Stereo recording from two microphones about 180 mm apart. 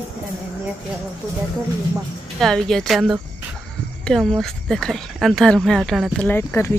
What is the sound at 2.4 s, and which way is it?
Speech, centre (ahead or behind).